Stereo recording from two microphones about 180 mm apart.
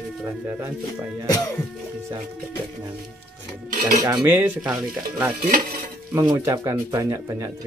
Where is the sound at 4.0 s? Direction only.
20° right (ahead or behind).